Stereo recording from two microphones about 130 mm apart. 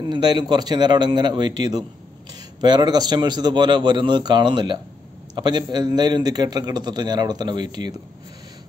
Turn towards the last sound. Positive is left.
turn(degrees=-35)  # may be behind; listen again after turning